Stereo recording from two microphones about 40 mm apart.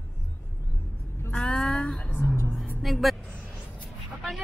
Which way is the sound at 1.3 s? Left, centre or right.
Left.